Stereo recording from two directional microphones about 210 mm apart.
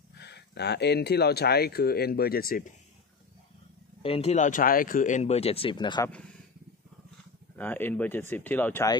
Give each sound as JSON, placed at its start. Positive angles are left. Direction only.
{"t": 0.1, "sound": "speech", "side_deg": 50}
{"t": 4.0, "sound": "speech", "side_deg": 30}
{"t": 7.5, "sound": "speech", "side_deg": 10}